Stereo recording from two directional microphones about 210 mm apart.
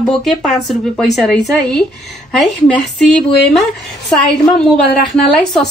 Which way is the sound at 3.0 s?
Centre (ahead or behind).